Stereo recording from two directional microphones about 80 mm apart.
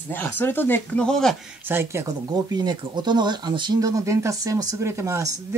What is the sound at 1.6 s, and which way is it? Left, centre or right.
Speech, right.